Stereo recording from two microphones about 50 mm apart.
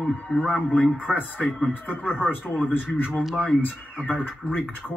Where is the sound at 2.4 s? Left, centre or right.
Left.